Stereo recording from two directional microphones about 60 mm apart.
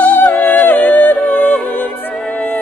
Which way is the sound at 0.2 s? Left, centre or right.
Left.